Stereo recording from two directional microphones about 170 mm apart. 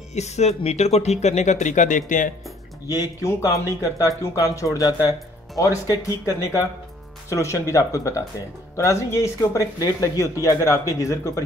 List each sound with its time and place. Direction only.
0.1 s speech: 40° left (ahead or behind)
2.9 s speech: 20° left (ahead or behind)